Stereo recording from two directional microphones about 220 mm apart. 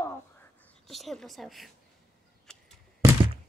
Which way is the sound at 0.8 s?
Centre (ahead or behind).